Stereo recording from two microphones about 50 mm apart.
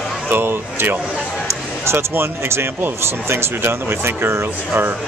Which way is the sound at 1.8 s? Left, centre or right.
Right.